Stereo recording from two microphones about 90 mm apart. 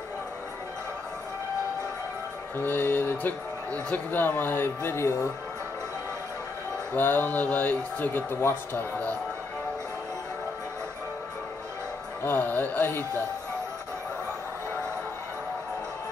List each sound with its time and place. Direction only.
2.5 s speech: 25° left (ahead or behind)
6.9 s speech: 20° left (ahead or behind)
12.2 s speech: 25° left (ahead or behind)